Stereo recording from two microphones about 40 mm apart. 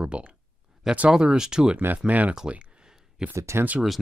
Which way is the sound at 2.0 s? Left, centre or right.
Right.